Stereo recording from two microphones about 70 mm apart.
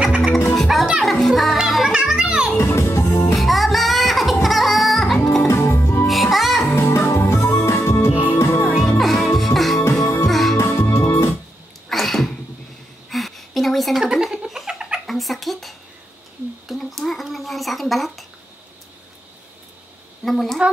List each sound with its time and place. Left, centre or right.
0.0 s music: centre
0.6 s music: centre
2.5 s music: left
3.3 s music: centre
5.5 s music: left
6.0 s music: centre
6.7 s music: left
8.6 s music: centre
9.9 s music: left
10.2 s music: centre
10.6 s music: left
11.9 s sneeze: centre
13.1 s a sound: centre
20.2 s a sound: centre